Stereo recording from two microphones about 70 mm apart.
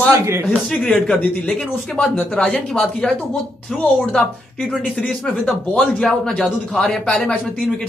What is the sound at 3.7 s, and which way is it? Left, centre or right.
Speech, centre.